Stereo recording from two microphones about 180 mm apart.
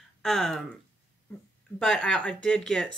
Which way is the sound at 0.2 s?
Centre (ahead or behind).